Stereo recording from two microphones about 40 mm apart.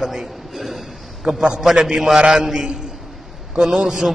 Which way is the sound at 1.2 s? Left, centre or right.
Centre.